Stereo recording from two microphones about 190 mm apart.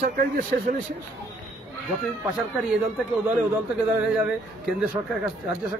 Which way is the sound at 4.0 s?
5° right (ahead or behind).